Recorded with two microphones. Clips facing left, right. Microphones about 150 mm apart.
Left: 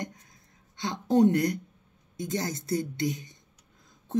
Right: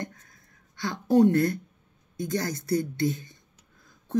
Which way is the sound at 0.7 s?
20° left (ahead or behind).